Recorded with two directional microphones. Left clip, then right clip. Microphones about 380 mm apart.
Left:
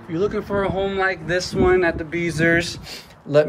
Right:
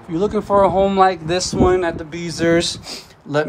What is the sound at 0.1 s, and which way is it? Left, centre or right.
Speech, centre.